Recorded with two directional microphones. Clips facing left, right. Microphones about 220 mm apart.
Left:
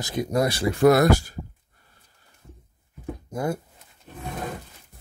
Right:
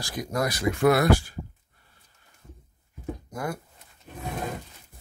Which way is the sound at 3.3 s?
25° left (ahead or behind).